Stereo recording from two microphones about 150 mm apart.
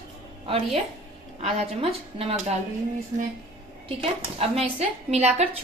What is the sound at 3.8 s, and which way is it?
A woman's voice, 40° right (ahead or behind).